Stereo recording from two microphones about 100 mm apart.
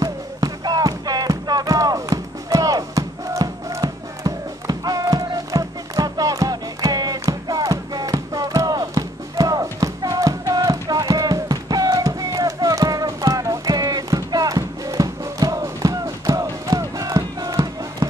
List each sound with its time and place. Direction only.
0.0 s music: 40° right (ahead or behind)